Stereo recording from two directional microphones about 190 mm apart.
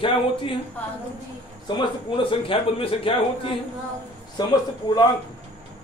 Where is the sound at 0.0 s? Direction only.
25° left (ahead or behind).